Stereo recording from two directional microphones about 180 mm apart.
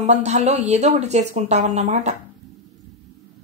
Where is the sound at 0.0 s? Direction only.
40° right (ahead or behind).